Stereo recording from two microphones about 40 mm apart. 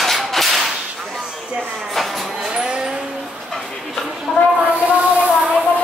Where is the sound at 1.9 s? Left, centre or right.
Centre.